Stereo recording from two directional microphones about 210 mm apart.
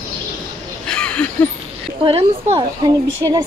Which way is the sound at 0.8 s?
5° left (ahead or behind).